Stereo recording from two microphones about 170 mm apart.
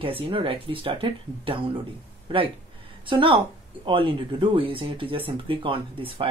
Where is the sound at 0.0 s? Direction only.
30° right (ahead or behind).